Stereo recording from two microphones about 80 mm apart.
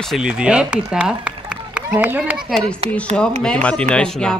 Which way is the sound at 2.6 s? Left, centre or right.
Centre.